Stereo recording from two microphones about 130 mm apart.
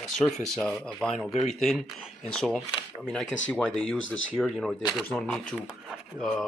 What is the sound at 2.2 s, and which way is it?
Speech, 5° left (ahead or behind).